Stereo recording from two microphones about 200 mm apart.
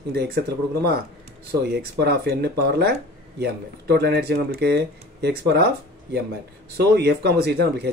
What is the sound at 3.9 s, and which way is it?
Speech, 55° right (ahead or behind).